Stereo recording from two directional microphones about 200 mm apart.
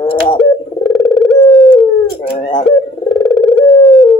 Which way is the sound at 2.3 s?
20° left (ahead or behind).